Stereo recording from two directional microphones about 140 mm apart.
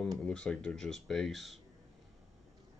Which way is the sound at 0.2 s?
5° left (ahead or behind).